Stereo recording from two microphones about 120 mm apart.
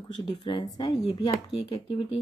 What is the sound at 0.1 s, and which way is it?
Speech, 40° left (ahead or behind).